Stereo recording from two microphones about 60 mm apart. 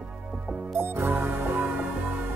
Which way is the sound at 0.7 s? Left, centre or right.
Right.